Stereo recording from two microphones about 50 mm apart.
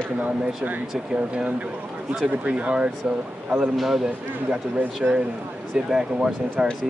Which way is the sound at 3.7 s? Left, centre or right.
Centre.